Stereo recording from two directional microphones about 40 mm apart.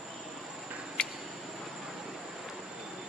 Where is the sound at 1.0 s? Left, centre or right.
Left.